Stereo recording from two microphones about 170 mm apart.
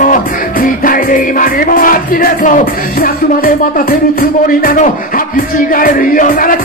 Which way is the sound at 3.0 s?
60° left (ahead or behind).